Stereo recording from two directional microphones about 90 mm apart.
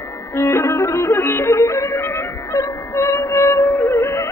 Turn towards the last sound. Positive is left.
turn(degrees=30)  # may be behind; listen again after turning